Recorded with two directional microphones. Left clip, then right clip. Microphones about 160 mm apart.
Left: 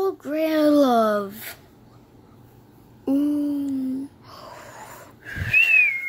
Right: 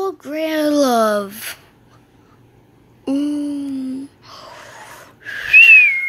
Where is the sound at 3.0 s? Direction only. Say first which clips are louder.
Right 2 dB; 5° right (ahead or behind).